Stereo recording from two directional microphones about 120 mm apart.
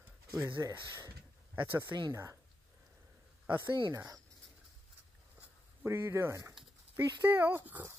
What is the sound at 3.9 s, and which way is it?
Speech, 30° right (ahead or behind).